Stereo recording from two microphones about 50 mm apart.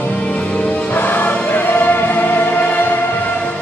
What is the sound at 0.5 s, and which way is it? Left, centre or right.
Music, left.